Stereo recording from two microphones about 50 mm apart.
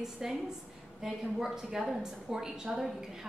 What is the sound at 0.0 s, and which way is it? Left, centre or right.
A woman's voice, centre.